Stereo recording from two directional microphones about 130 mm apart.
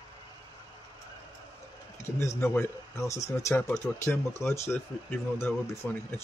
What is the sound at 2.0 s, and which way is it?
Speech, 20° left (ahead or behind).